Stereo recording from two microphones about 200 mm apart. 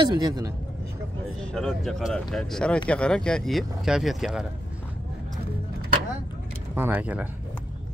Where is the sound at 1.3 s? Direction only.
5° left (ahead or behind).